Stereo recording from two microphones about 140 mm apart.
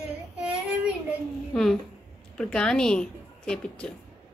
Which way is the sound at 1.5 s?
Centre (ahead or behind).